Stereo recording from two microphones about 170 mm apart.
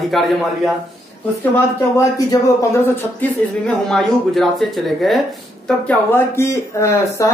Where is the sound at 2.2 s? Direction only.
20° left (ahead or behind); by 5.2 s centre (ahead or behind).